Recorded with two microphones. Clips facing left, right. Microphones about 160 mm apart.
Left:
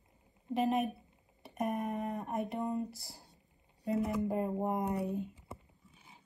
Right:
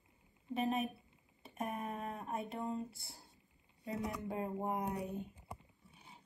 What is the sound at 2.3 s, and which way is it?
Speech, 75° left (ahead or behind).